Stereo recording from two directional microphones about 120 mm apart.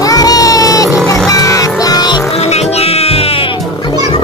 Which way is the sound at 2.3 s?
60° left (ahead or behind).